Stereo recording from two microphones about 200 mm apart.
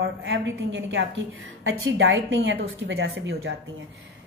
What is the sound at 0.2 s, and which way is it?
A woman's voice, 75° right (ahead or behind).